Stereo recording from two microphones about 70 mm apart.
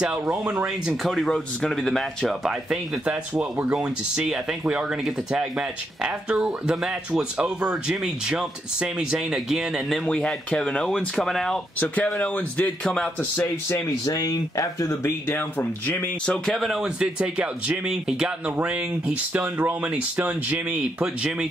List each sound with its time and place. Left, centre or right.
1.0 s speech: centre
2.7 s speech: centre
10.0 s speech: centre
11.8 s speech: left
14.0 s speech: left
15.0 s speech: left
16.4 s speech: centre
16.8 s speech: centre